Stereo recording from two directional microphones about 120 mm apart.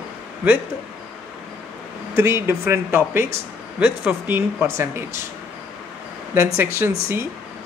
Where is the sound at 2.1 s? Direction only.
20° right (ahead or behind).